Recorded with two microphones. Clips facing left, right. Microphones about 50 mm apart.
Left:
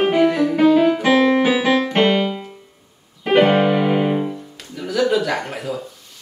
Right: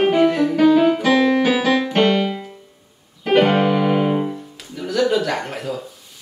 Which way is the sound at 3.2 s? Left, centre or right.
Centre.